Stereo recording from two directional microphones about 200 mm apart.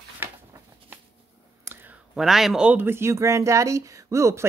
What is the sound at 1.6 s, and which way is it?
Speech, 5° right (ahead or behind).